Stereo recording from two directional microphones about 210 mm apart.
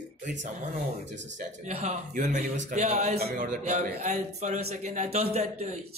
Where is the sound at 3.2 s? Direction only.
45° right (ahead or behind).